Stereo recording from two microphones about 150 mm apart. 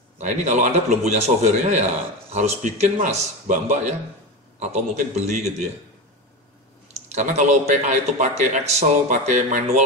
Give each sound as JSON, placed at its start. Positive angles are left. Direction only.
{"t": 0.2, "sound": "a man's voice", "side_deg": -55}
{"t": 7.1, "sound": "a man's voice", "side_deg": -50}